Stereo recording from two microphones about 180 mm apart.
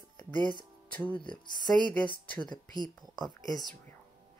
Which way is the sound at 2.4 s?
25° left (ahead or behind).